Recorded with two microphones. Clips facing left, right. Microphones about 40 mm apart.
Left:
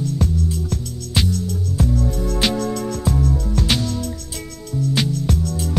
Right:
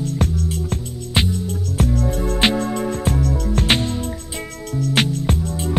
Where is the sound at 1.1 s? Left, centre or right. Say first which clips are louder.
Right 1 dB; right.